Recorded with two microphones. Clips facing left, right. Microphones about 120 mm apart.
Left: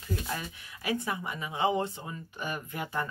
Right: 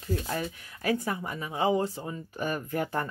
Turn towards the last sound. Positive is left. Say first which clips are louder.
# right 4 dB
turn(degrees=-45)  # may be behind; listen again after turning